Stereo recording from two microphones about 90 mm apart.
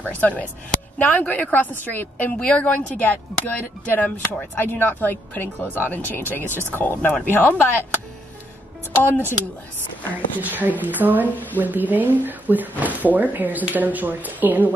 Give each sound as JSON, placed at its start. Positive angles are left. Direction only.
{"t": 0.2, "sound": "a woman's voice", "side_deg": 15}
{"t": 8.9, "sound": "a woman's voice", "side_deg": 20}
{"t": 10.4, "sound": "speech", "side_deg": -20}